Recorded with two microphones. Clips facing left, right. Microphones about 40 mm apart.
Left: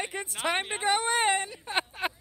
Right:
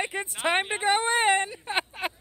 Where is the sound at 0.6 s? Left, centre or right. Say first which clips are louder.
Right 3 dB; centre; by 1.8 s right.